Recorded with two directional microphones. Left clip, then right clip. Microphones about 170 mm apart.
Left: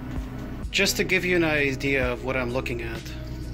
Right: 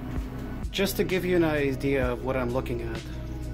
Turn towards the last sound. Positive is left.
turn(degrees=-15)  # may be behind; listen again after turning